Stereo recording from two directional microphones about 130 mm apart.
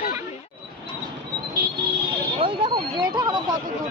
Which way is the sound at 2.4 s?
40° right (ahead or behind).